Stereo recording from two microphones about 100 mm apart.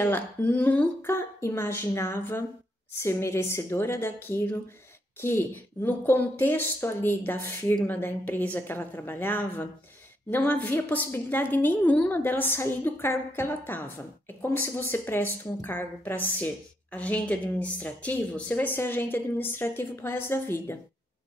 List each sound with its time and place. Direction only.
0.0 s a woman's voice: 15° left (ahead or behind)